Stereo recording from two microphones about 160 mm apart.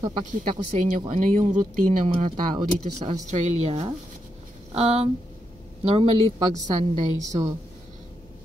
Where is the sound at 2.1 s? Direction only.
35° right (ahead or behind).